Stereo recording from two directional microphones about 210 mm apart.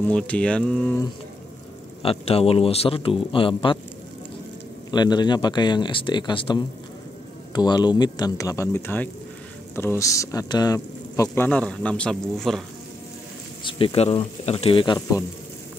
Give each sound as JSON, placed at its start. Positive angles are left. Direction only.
{"t": 0.0, "sound": "mantra", "side_deg": 5}
{"t": 2.0, "sound": "speech", "side_deg": 30}
{"t": 4.9, "sound": "speech", "side_deg": 20}
{"t": 13.7, "sound": "speech", "side_deg": 25}